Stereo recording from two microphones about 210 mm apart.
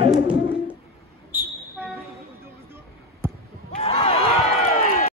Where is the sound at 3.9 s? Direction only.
25° left (ahead or behind).